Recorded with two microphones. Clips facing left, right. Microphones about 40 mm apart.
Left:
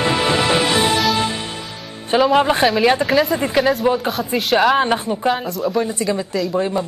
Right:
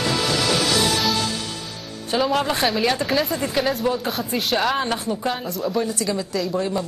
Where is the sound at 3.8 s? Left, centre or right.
Left.